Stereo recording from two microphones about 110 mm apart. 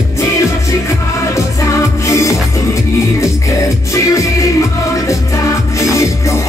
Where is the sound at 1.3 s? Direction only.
25° left (ahead or behind).